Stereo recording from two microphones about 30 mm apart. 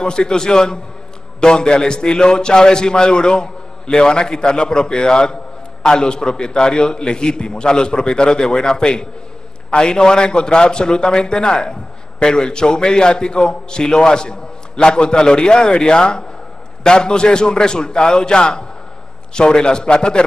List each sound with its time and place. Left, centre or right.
0.0 s a man's voice: left